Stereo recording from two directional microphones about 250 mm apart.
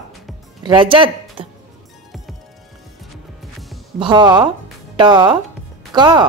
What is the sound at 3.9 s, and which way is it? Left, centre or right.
Speech, centre.